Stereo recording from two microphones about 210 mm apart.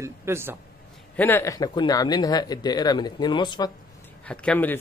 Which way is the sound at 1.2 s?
10° left (ahead or behind).